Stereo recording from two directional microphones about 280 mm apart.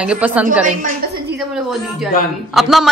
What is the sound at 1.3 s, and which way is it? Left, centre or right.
A woman's voice, centre.